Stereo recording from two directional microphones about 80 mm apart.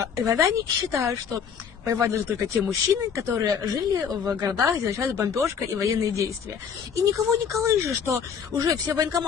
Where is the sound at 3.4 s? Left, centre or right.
Right.